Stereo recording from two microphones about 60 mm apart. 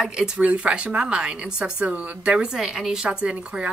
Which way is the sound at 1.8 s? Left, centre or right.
Right.